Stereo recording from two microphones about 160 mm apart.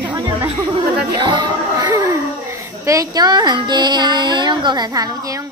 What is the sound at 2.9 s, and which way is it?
Speech, 25° right (ahead or behind).